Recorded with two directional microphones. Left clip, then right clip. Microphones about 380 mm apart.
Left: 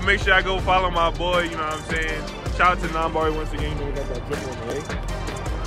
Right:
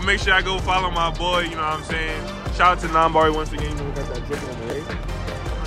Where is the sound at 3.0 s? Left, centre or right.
Right.